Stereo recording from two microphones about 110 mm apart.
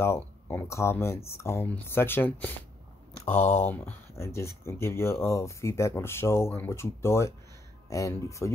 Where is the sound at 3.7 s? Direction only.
20° left (ahead or behind).